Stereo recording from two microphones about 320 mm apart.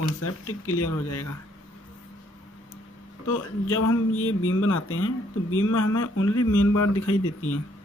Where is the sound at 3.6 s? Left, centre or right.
Left.